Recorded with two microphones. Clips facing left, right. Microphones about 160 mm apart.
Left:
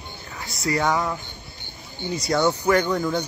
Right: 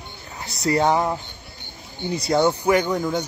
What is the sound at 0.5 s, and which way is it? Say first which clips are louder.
Speech: right 4 dB; 30° right (ahead or behind).